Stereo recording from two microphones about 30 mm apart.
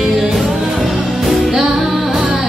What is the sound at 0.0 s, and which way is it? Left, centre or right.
Music, centre.